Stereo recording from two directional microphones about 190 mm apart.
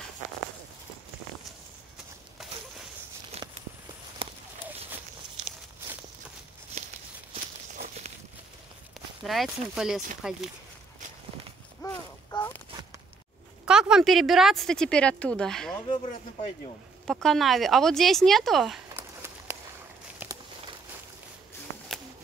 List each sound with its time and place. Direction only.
3.3 s a sound: 35° right (ahead or behind)
4.2 s horse: 30° right (ahead or behind)
7.7 s walk: 45° right (ahead or behind)
9.2 s speech: centre (ahead or behind)
11.8 s a sound: 15° left (ahead or behind)
13.7 s a woman's voice: 5° right (ahead or behind)
15.9 s speech: 25° left (ahead or behind)
17.0 s speech: centre (ahead or behind)
18.9 s a sound: 10° right (ahead or behind)
20.2 s walk: 10° right (ahead or behind)